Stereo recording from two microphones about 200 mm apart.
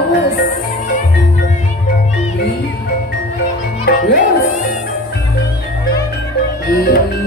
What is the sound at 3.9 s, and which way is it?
Music, 60° left (ahead or behind).